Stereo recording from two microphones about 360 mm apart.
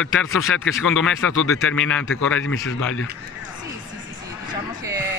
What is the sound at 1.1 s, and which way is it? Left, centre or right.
Speech, left.